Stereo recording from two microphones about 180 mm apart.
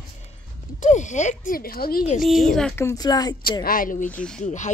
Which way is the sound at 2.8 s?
15° left (ahead or behind).